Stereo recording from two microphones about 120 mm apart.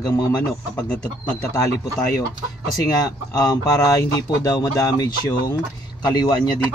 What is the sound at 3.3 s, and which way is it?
Speech, 30° left (ahead or behind).